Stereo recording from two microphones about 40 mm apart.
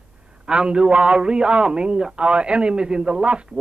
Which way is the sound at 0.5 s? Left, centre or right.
Right.